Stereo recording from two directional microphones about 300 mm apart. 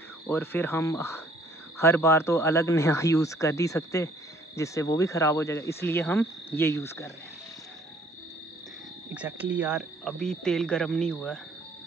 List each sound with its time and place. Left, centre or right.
0.3 s speech: centre
9.1 s speech: centre